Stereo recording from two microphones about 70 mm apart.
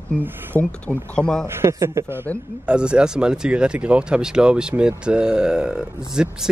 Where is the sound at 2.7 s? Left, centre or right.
Centre.